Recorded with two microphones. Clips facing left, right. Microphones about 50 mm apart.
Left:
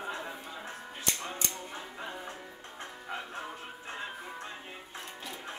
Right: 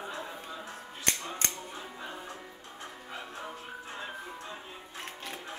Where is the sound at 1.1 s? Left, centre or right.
Right.